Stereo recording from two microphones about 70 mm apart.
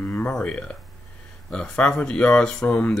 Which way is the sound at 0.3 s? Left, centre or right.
Centre.